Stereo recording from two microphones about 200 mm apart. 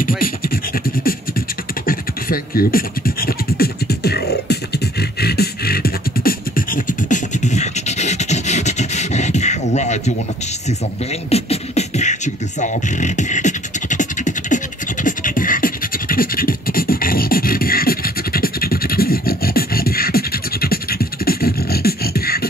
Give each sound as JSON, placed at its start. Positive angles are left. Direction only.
{"t": 1.9, "sound": "beatboxing", "side_deg": 45}
{"t": 11.2, "sound": "beatboxing", "side_deg": 30}